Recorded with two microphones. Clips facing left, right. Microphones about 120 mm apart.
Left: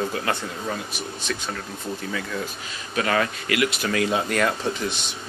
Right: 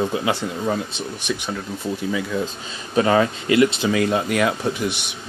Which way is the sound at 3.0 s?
25° right (ahead or behind).